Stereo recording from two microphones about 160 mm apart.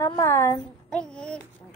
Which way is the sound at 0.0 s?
20° left (ahead or behind).